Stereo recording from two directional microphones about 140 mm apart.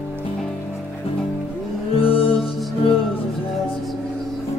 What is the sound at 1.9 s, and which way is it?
Music, 40° left (ahead or behind).